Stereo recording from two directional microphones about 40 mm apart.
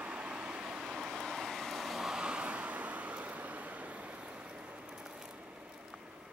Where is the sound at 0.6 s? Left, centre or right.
Centre.